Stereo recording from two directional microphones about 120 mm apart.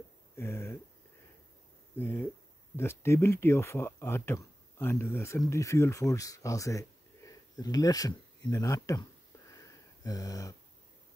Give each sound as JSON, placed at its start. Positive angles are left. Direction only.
{"t": 0.4, "sound": "speech", "side_deg": 20}
{"t": 2.0, "sound": "speech", "side_deg": 15}
{"t": 9.5, "sound": "a sound", "side_deg": 30}